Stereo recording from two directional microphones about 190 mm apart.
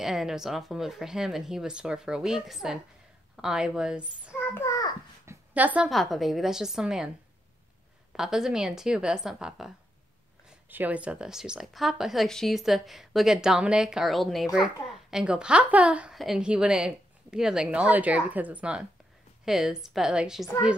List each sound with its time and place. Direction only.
0.0 s speech: centre (ahead or behind)
4.6 s a sound: 20° left (ahead or behind)
5.2 s a woman's voice: 10° right (ahead or behind)
8.1 s speech: 5° right (ahead or behind)
10.7 s speech: 10° right (ahead or behind)